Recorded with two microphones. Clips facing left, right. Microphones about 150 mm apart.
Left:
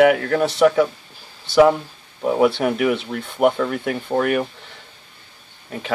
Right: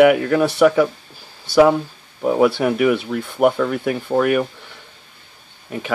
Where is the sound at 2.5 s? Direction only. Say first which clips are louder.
Right 2 dB; 5° right (ahead or behind).